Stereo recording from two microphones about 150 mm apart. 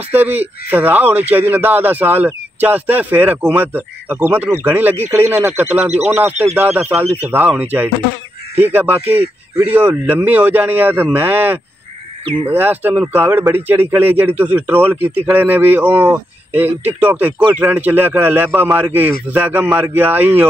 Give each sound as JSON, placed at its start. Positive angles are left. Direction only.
{"t": 0.1, "sound": "speech", "side_deg": -10}
{"t": 12.3, "sound": "speech", "side_deg": -35}
{"t": 12.5, "sound": "speech", "side_deg": -15}